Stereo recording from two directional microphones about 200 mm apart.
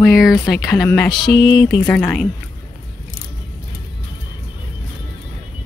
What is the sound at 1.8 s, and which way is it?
Speech, 10° left (ahead or behind).